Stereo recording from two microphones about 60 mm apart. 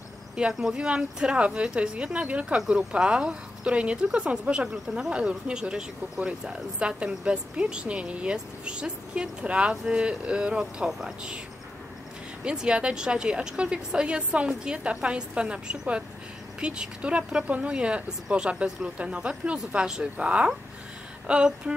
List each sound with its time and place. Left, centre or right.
0.4 s speech: centre
12.4 s speech: centre